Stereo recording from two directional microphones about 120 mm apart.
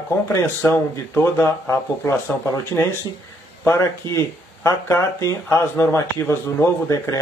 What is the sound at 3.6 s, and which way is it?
Speech, 25° left (ahead or behind).